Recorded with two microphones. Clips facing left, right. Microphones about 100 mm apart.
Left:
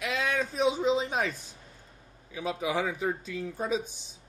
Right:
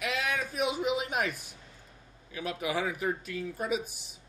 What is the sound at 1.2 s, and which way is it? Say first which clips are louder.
Speech: left 1 dB; 15° right (ahead or behind).